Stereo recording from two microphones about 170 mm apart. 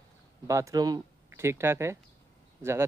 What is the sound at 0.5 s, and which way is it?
Speech, 20° right (ahead or behind).